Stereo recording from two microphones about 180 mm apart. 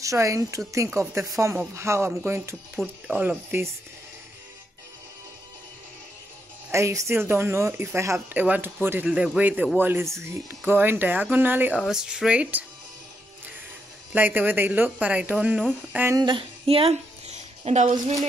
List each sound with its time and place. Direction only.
0.0 s speech: 15° right (ahead or behind)
6.7 s speech: 15° right (ahead or behind)
14.1 s speech: 10° right (ahead or behind)
16.2 s a sound: 25° right (ahead or behind)